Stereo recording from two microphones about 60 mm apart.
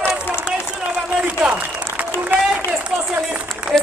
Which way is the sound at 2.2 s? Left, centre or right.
Right.